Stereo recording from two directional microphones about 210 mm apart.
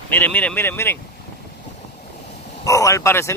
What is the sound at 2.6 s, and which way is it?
Speech, 15° left (ahead or behind).